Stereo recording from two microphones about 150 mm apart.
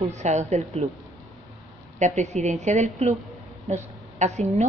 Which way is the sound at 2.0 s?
55° right (ahead or behind).